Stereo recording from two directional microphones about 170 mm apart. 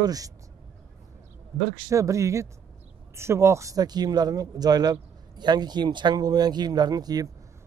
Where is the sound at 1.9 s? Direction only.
20° right (ahead or behind).